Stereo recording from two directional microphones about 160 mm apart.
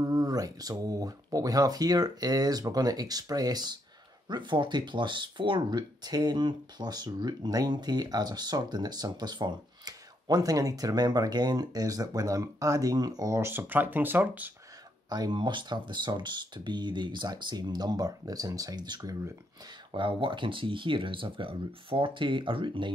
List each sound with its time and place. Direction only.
0.0 s speech: 25° right (ahead or behind)
15.0 s speech: 25° right (ahead or behind)